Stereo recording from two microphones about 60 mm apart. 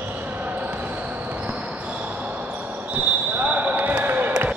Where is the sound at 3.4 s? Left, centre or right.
Right.